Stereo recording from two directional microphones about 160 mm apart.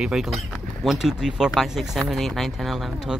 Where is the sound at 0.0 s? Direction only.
5° right (ahead or behind).